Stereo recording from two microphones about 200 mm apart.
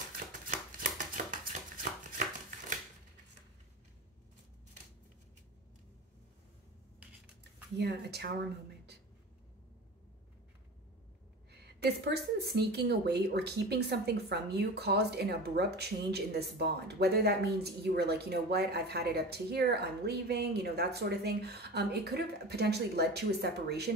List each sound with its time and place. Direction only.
0.5 s a sound: 40° right (ahead or behind)
7.7 s speech: 55° right (ahead or behind)
11.6 s speech: 55° right (ahead or behind)